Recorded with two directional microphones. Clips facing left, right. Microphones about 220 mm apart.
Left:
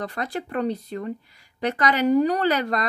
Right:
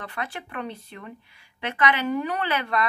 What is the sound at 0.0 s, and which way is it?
Speech, 40° left (ahead or behind).